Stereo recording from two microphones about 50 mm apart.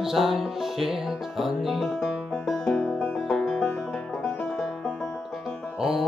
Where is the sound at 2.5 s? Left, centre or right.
Centre.